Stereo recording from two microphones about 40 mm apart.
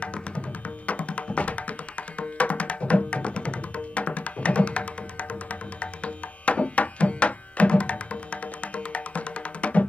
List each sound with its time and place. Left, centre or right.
0.8 s music: left